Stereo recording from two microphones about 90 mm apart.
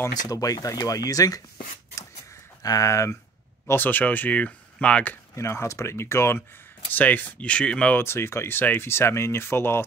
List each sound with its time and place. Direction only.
0.2 s speech: 40° left (ahead or behind)
2.6 s speech: 40° left (ahead or behind)
3.6 s speech: 20° left (ahead or behind)
5.3 s speech: 30° left (ahead or behind); by 8.0 s 10° left (ahead or behind)
8.0 s speech: 30° left (ahead or behind)